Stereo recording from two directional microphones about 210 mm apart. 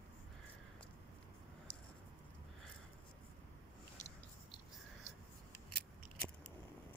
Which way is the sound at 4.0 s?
35° left (ahead or behind).